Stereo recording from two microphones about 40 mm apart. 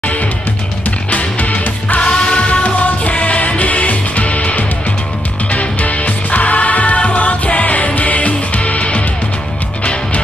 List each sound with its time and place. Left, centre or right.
1.1 s music: left
2.0 s music: left